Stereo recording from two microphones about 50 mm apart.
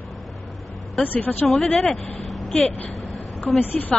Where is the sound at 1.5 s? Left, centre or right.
Centre.